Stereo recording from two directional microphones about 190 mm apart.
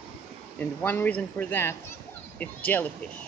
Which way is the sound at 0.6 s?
10° left (ahead or behind).